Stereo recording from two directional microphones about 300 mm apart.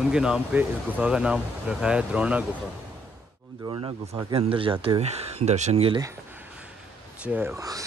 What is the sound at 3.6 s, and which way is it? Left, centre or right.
Speech, centre.